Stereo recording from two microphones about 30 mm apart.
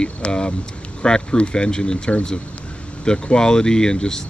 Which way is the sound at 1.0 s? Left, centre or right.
Left.